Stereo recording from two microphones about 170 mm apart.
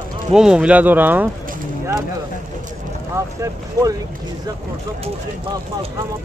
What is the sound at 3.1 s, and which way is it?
Speech, 15° right (ahead or behind).